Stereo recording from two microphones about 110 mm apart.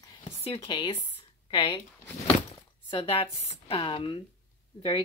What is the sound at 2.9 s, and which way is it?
A woman's voice, 60° left (ahead or behind).